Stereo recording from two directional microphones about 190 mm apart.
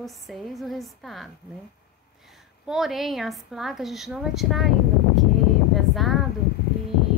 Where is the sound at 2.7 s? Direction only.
Centre (ahead or behind).